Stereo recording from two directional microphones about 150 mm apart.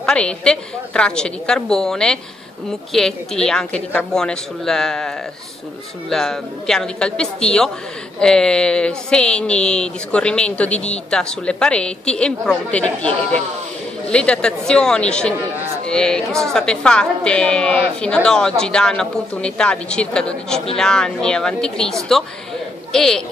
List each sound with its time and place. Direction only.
0.0 s a woman's voice: 5° left (ahead or behind)
22.9 s speech: 5° left (ahead or behind)